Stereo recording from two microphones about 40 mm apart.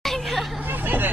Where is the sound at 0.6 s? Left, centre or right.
Right.